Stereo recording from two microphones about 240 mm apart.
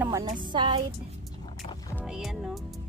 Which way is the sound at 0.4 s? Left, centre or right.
Centre.